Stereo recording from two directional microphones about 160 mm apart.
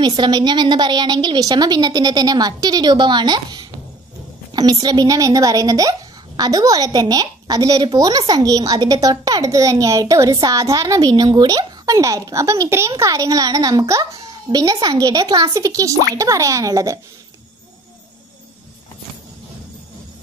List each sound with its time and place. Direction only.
0.0 s a child's voice: 25° right (ahead or behind)